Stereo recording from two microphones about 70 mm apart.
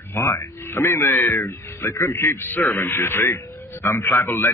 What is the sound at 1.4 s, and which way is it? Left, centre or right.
Speech, left.